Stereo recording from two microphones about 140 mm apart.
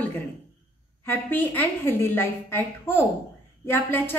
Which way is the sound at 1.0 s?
15° left (ahead or behind).